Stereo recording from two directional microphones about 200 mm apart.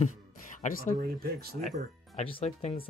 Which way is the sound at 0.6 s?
40° left (ahead or behind).